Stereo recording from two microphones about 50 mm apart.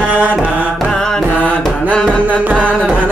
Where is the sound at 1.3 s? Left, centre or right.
Left.